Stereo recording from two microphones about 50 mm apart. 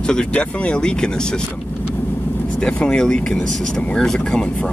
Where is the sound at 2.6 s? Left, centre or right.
Centre.